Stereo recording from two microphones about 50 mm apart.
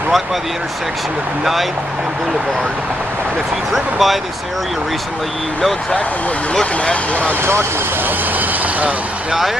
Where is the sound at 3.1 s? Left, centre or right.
Right.